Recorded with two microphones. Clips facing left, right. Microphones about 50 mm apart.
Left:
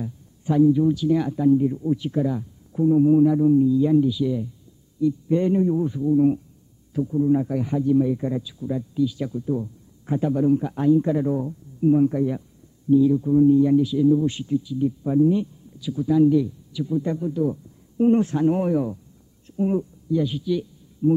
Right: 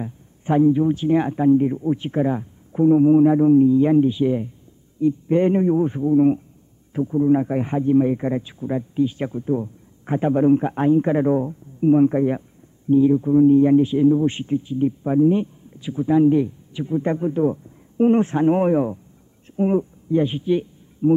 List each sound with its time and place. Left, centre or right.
0.0 s a man's voice: right